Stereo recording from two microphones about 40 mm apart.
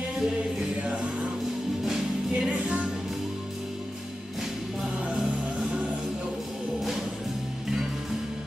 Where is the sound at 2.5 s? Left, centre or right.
Right.